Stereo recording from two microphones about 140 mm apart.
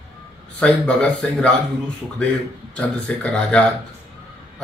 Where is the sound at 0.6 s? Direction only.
5° left (ahead or behind).